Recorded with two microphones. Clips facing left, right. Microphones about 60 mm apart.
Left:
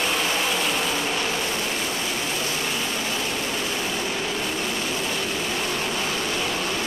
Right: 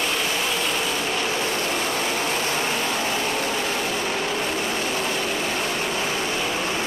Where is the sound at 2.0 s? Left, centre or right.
Right.